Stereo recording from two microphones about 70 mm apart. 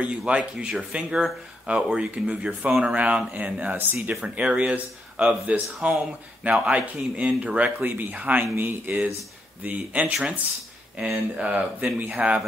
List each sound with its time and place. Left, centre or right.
0.0 s speech: centre
4.1 s speech: centre
11.3 s speech: centre